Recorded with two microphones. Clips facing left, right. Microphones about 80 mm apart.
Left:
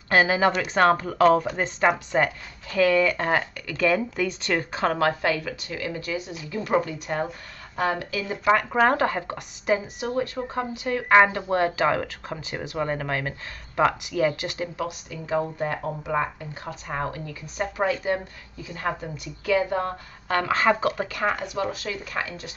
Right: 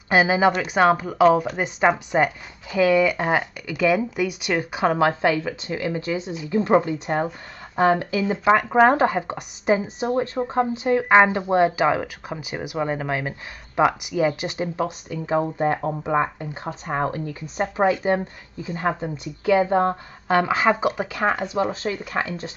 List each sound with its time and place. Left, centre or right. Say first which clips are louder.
0.1 s speech: right 2 dB; centre; by 22.5 s right